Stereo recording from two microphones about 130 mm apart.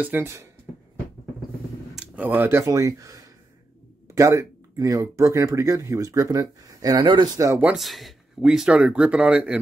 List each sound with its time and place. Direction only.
0.0 s speech: 15° right (ahead or behind)
2.0 s speech: 15° right (ahead or behind)
2.6 s speech: 25° right (ahead or behind)
7.6 s speech: centre (ahead or behind)